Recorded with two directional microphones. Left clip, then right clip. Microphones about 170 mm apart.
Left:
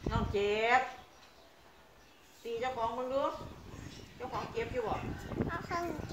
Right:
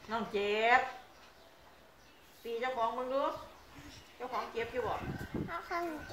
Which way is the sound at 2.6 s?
20° left (ahead or behind).